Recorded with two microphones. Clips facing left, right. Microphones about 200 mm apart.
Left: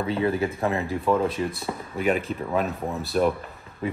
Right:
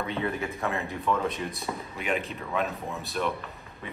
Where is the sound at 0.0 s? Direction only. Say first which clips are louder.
Left 6 dB; 35° left (ahead or behind).